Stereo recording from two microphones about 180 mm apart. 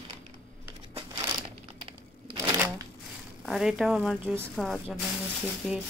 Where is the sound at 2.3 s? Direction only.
20° right (ahead or behind).